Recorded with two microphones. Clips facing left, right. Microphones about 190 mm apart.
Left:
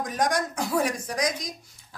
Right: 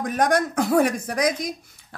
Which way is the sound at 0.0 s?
60° right (ahead or behind).